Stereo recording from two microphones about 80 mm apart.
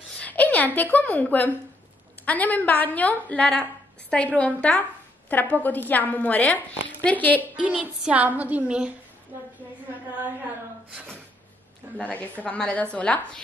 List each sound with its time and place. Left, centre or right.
0.2 s a woman's voice: left
7.6 s a woman's voice: centre
12.0 s a woman's voice: centre